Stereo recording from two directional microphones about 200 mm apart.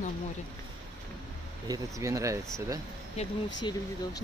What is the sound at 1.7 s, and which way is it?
Speech, 15° right (ahead or behind).